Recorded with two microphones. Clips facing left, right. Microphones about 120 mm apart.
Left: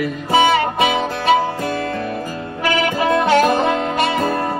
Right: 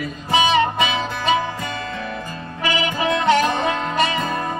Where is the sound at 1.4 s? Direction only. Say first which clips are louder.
Left 6 dB; 55° left (ahead or behind).